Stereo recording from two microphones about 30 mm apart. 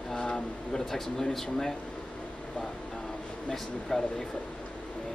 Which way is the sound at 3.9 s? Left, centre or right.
Left.